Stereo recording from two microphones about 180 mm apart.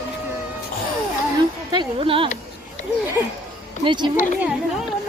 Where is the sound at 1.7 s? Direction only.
25° right (ahead or behind).